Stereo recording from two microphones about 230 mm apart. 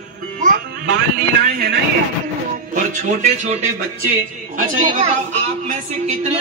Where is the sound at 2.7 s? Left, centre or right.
Right.